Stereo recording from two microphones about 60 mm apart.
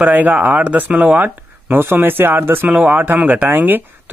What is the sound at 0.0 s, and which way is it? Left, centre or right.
Speech, right.